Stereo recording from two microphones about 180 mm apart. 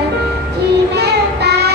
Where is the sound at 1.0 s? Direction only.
65° right (ahead or behind).